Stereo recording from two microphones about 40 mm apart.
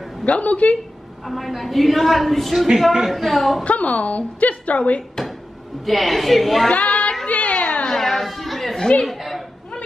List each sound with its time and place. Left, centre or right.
0.2 s a woman's voice: left
1.2 s a woman's voice: centre
3.6 s a woman's voice: left
5.9 s a woman's voice: centre
6.7 s child singing: left
7.2 s a sound: left
7.9 s chatter: centre
8.7 s chatter: centre
9.0 s chatter: centre